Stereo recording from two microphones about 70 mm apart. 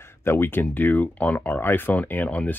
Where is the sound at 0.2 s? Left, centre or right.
Left.